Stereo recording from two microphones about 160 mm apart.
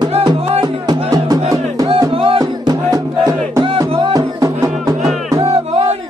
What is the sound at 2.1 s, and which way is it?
Music, 35° right (ahead or behind).